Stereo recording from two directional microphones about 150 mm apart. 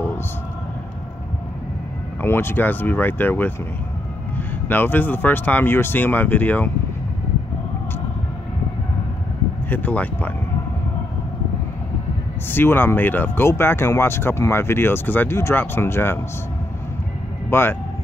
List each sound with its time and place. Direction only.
2.2 s speech: 15° left (ahead or behind)
9.7 s speech: 10° left (ahead or behind)
12.4 s speech: 15° left (ahead or behind)
17.5 s speech: 15° left (ahead or behind)